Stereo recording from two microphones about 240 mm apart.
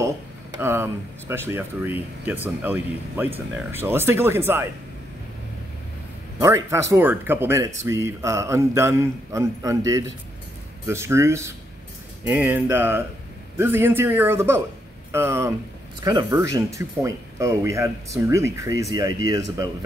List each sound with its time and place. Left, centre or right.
0.6 s speech: centre
6.4 s speech: centre